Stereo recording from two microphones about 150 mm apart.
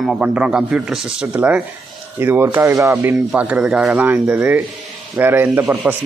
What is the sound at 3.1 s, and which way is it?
A man's voice, 5° right (ahead or behind).